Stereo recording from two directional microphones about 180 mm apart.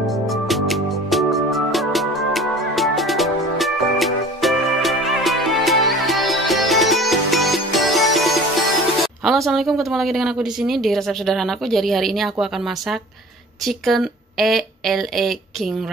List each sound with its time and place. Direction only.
0.0 s music: centre (ahead or behind)
9.2 s a woman's voice: centre (ahead or behind)
13.7 s a woman's voice: centre (ahead or behind)